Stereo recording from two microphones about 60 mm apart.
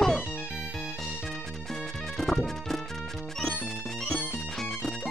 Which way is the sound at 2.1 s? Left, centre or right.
Centre.